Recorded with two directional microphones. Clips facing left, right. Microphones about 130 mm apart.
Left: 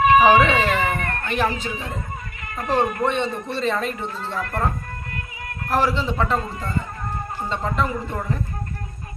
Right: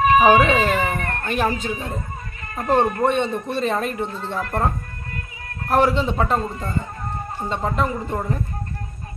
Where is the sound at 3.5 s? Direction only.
45° right (ahead or behind).